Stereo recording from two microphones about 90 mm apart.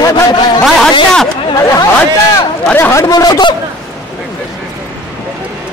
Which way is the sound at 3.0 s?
45° left (ahead or behind).